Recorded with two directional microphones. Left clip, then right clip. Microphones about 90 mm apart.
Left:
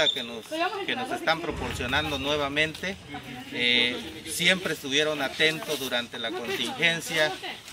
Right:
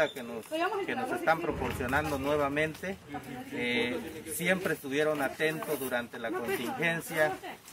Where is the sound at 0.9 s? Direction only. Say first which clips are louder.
Left 2 dB; 30° right (ahead or behind).